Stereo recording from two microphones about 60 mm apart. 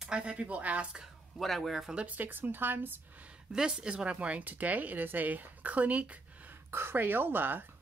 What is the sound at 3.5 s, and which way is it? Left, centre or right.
Speech, centre.